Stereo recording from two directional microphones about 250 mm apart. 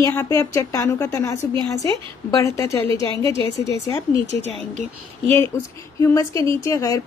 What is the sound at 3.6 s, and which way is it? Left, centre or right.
Speech, centre.